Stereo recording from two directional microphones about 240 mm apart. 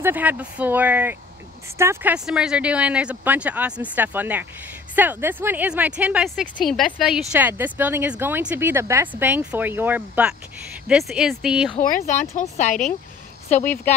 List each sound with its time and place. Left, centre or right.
0.0 s speech: centre
11.8 s speech: left